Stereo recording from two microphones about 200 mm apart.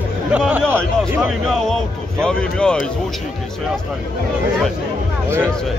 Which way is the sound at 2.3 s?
5° left (ahead or behind).